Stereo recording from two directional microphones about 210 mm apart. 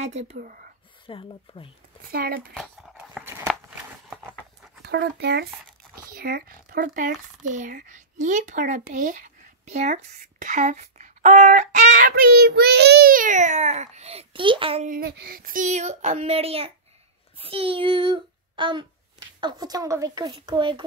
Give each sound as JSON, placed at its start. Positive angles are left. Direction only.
{"t": 0.0, "sound": "speech", "side_deg": -30}
{"t": 0.4, "sound": "speech", "side_deg": -45}
{"t": 1.0, "sound": "speech", "side_deg": 25}
{"t": 2.0, "sound": "speech", "side_deg": -45}
{"t": 2.5, "sound": "a sound", "side_deg": 0}
{"t": 4.8, "sound": "speech", "side_deg": -50}
{"t": 14.9, "sound": "speech", "side_deg": -45}